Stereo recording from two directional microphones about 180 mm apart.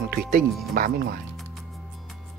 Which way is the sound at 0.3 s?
55° right (ahead or behind).